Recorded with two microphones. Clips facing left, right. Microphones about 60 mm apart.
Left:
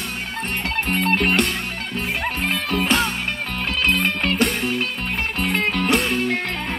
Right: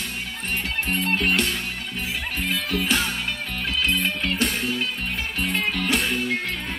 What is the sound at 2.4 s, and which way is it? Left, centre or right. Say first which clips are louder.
Music: left 3 dB; left.